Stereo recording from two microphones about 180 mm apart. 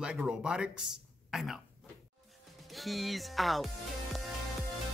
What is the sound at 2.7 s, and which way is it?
Speech, centre (ahead or behind).